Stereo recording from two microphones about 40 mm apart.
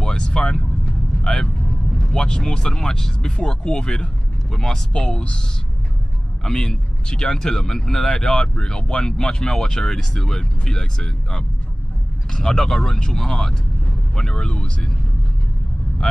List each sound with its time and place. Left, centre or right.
0.0 s vehicle: centre
2.0 s speech: centre
4.9 s speech: left
6.4 s speech: centre